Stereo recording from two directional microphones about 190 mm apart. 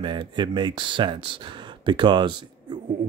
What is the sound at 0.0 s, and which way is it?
Speech, 25° right (ahead or behind).